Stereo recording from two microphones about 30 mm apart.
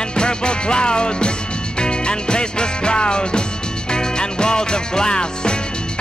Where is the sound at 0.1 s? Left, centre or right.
Left.